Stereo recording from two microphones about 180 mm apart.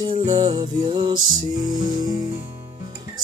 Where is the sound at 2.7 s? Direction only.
25° right (ahead or behind).